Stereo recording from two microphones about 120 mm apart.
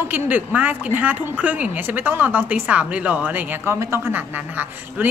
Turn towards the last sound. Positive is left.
turn(degrees=-15)  # may be behind; listen again after turning